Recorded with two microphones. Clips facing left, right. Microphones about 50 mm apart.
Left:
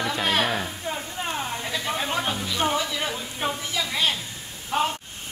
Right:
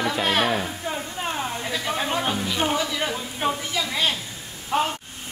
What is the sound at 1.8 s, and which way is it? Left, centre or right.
Music, right.